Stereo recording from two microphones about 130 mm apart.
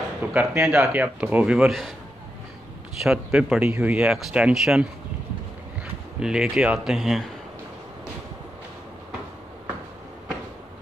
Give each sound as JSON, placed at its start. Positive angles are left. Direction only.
{"t": 0.2, "sound": "speech", "side_deg": -10}
{"t": 3.0, "sound": "speech", "side_deg": -5}
{"t": 6.1, "sound": "speech", "side_deg": -5}